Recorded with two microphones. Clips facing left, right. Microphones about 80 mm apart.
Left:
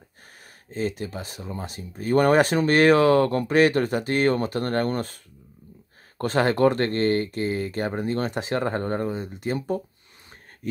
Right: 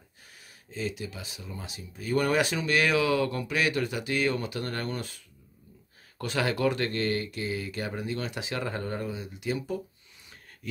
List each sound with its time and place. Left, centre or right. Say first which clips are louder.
0.7 s speech: left 6 dB; left